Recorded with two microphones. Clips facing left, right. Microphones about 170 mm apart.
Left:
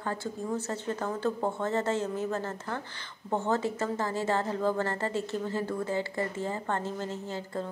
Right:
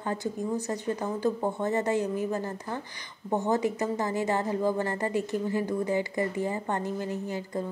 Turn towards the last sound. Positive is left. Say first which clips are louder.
# right 3 dB
turn(degrees=-15)  # may be behind; listen again after turning